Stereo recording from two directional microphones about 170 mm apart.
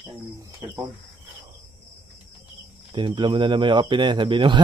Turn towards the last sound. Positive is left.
turn(degrees=-30)  # may be behind; listen again after turning